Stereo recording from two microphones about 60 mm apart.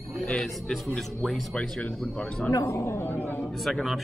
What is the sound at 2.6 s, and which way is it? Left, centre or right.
Speech, left.